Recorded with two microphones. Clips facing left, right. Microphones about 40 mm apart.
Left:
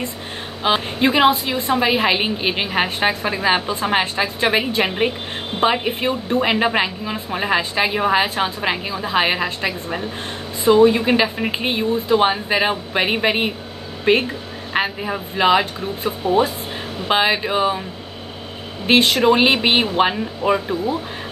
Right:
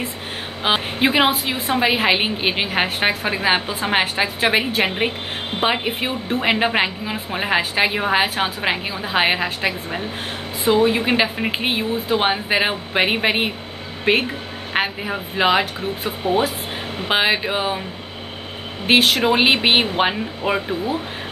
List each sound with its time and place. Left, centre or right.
0.7 s a woman's voice: right
10.8 s a woman's voice: centre
11.6 s a woman's voice: centre
17.1 s a woman's voice: centre
18.9 s a woman's voice: centre
19.3 s a woman's voice: centre